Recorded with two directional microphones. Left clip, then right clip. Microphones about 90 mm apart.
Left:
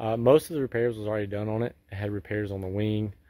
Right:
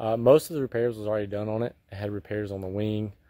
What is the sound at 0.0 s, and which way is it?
Speech, centre (ahead or behind).